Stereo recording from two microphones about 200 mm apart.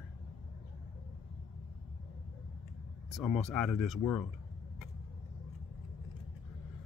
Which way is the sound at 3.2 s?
Centre (ahead or behind).